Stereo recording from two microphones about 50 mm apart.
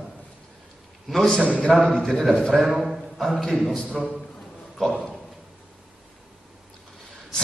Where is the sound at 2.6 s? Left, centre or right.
Centre.